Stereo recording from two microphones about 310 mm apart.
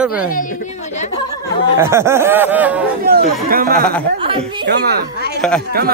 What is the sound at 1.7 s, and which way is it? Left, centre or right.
Speech, centre.